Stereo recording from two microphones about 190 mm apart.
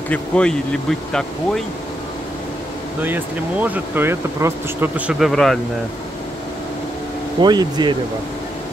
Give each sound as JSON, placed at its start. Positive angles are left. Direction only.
{"t": 0.1, "sound": "speech", "side_deg": 5}
{"t": 3.0, "sound": "speech", "side_deg": -10}
{"t": 7.4, "sound": "speech", "side_deg": -20}